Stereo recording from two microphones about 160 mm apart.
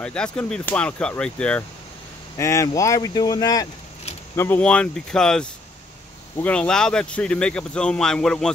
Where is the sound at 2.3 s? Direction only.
20° left (ahead or behind).